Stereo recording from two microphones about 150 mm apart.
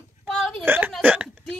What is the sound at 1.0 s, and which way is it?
Hiccup, 10° right (ahead or behind).